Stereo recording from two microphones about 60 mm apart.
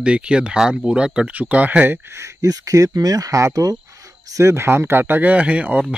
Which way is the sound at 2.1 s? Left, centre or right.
Right.